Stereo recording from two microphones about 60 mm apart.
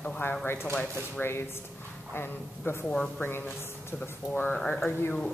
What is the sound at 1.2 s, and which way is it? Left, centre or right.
A woman's voice, left.